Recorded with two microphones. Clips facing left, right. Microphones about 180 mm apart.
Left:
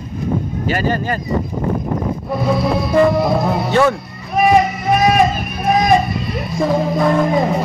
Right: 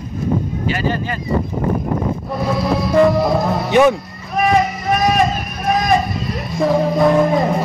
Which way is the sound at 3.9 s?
Centre (ahead or behind).